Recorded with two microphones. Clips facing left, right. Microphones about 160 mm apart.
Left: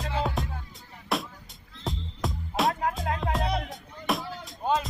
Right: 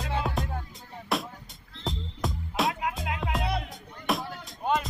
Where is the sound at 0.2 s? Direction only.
Centre (ahead or behind).